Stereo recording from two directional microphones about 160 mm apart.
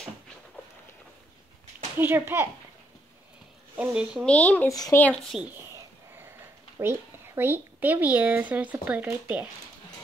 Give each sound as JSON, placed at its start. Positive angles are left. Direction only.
{"t": 2.0, "sound": "speech", "side_deg": -15}
{"t": 3.7, "sound": "speech", "side_deg": -5}
{"t": 4.3, "sound": "speech", "side_deg": 10}
{"t": 4.6, "sound": "speech", "side_deg": 20}
{"t": 5.0, "sound": "speech", "side_deg": 5}
{"t": 6.8, "sound": "speech", "side_deg": -15}